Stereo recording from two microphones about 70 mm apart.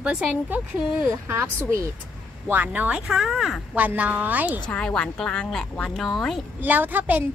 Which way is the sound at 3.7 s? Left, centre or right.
Right.